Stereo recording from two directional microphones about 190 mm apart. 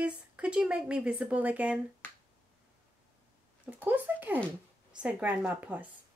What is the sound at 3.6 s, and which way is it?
Speech, 10° right (ahead or behind).